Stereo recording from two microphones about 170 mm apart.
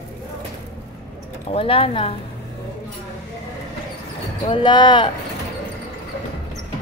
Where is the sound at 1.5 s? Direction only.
35° left (ahead or behind).